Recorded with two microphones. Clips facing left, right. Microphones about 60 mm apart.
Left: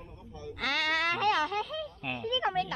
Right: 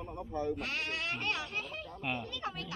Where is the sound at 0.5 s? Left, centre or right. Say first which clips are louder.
Left 7 dB; left.